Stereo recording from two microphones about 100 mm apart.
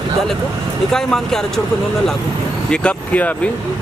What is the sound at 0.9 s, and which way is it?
Speech, 5° left (ahead or behind).